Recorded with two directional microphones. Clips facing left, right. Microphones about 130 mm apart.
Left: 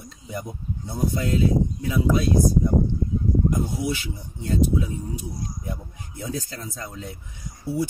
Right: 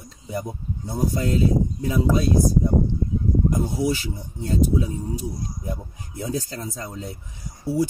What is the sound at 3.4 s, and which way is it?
Speech, 35° right (ahead or behind).